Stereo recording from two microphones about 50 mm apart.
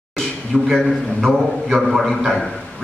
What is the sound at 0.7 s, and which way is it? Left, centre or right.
A man's voice, centre.